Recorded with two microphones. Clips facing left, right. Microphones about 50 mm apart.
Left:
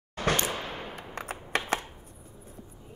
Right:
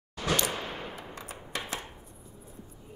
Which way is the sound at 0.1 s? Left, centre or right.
Left.